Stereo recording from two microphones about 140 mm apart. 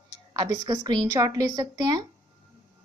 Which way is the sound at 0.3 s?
30° right (ahead or behind).